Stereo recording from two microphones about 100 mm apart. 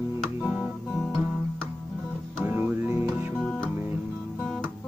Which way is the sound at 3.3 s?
10° left (ahead or behind).